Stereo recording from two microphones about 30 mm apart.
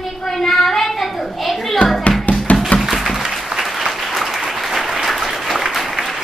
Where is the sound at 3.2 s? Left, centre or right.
Centre.